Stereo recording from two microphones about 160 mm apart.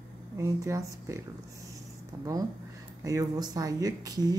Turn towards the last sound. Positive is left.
turn(degrees=-25)  # may be behind; listen again after turning